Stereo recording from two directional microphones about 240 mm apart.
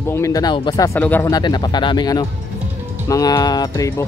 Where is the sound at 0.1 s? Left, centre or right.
Centre.